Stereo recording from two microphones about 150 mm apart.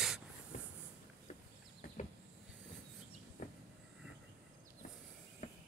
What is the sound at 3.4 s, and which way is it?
Train, 55° left (ahead or behind).